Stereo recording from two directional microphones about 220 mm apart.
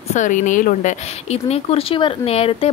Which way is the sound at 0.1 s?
35° left (ahead or behind).